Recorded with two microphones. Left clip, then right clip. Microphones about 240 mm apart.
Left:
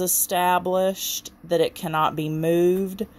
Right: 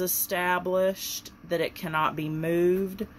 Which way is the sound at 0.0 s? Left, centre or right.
Left.